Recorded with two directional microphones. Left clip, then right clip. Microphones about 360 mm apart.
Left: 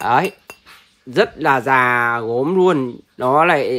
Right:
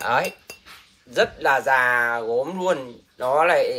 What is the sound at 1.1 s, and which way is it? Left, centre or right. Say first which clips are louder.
Speech: left 4 dB; left.